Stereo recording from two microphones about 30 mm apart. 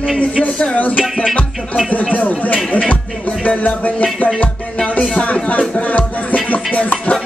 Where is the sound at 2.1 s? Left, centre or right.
Left.